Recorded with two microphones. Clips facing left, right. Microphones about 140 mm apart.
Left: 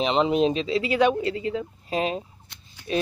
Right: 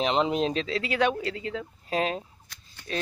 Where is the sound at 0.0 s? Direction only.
Centre (ahead or behind).